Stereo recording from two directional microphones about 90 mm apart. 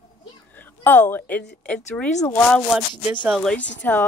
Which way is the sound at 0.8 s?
20° left (ahead or behind).